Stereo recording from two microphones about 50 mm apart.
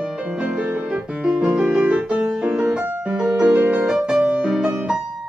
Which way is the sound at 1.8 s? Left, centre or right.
Right.